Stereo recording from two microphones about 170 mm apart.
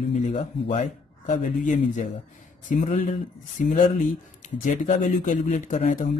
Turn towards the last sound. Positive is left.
turn(degrees=50)  # may be behind; listen again after turning